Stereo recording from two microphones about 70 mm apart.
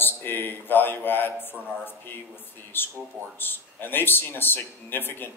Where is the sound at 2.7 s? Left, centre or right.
Left.